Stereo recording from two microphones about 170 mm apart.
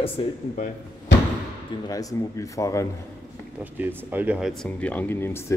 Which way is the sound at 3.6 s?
10° right (ahead or behind).